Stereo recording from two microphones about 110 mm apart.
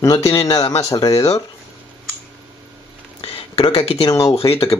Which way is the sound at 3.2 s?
55° left (ahead or behind).